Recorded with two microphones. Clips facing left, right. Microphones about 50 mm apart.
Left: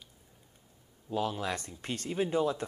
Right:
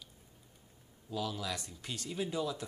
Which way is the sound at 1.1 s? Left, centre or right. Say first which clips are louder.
Left 5 dB; left.